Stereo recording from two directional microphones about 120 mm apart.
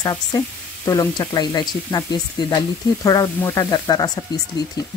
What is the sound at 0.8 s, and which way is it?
Speech, 30° left (ahead or behind).